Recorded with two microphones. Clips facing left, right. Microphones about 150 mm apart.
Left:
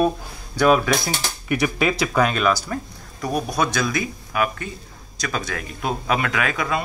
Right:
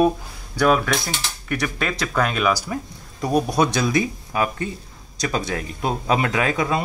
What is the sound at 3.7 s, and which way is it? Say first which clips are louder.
Speech: right 3 dB; 25° right (ahead or behind).